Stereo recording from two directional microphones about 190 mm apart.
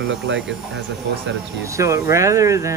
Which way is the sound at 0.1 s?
75° right (ahead or behind).